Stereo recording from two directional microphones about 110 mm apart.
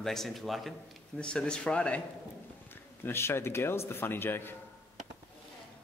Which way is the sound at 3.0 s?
20° left (ahead or behind).